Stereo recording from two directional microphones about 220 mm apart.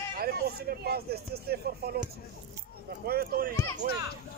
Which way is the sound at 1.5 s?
45° right (ahead or behind).